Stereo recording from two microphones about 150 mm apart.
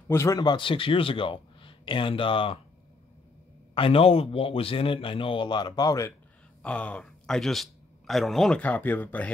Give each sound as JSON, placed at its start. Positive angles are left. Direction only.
{"t": 0.1, "sound": "a man's voice", "side_deg": 20}
{"t": 3.7, "sound": "a man's voice", "side_deg": 40}
{"t": 6.6, "sound": "speech", "side_deg": 10}